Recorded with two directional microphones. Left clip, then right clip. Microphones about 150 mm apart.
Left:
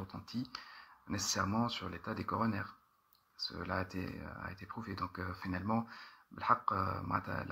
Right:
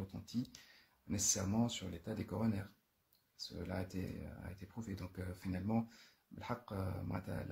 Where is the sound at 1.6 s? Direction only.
25° right (ahead or behind).